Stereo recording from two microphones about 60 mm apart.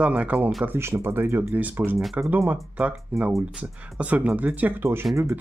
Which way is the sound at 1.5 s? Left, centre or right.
Right.